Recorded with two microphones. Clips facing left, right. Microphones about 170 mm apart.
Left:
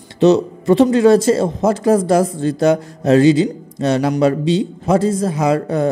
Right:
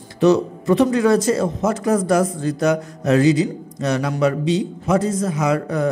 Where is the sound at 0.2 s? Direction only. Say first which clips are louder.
Left 3 dB; 25° left (ahead or behind).